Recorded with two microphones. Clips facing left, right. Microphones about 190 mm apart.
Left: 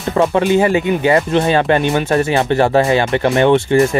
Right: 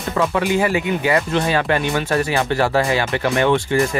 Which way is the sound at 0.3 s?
30° left (ahead or behind).